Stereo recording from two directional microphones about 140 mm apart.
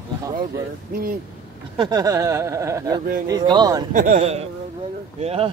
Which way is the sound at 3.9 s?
65° right (ahead or behind).